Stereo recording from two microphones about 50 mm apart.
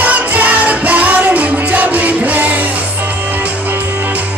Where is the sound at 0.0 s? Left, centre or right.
Right.